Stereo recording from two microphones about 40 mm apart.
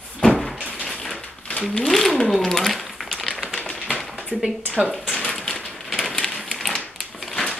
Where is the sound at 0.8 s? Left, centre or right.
Centre.